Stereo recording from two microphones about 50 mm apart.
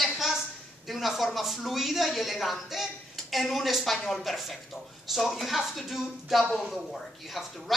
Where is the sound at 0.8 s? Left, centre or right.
Centre.